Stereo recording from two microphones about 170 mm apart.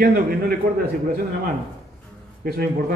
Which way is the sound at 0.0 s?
60° right (ahead or behind).